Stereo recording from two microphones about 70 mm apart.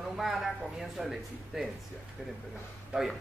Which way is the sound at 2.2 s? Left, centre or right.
Centre.